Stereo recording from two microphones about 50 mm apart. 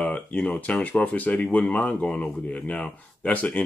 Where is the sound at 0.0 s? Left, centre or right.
Left.